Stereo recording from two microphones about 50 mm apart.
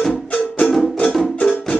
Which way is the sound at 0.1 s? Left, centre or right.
Left.